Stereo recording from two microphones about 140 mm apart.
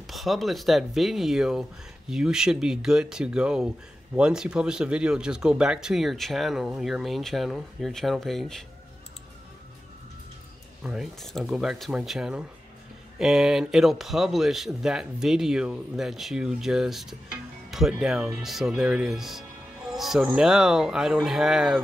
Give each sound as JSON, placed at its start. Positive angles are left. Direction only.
{"t": 0.0, "sound": "speech", "side_deg": 0}
{"t": 10.8, "sound": "speech", "side_deg": 0}